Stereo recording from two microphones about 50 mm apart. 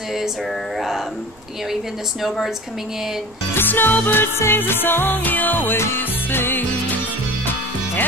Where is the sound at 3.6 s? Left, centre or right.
Left.